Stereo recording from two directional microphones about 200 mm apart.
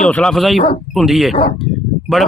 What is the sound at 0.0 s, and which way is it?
Speech, 5° left (ahead or behind).